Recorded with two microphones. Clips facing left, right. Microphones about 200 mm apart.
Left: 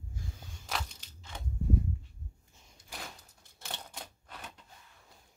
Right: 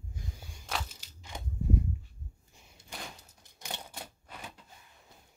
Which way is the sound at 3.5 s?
15° right (ahead or behind).